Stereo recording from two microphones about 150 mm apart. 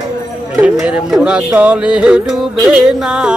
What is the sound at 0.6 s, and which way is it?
Speech, 5° right (ahead or behind).